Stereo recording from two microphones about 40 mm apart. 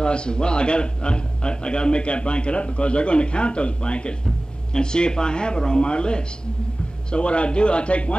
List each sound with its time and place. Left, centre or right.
0.0 s a man's voice: left